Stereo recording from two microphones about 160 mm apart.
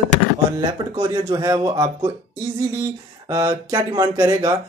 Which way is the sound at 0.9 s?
25° right (ahead or behind).